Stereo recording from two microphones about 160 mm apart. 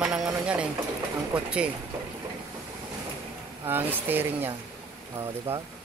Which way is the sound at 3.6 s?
10° right (ahead or behind).